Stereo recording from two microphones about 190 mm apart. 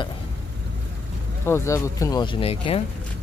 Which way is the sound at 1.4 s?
15° left (ahead or behind).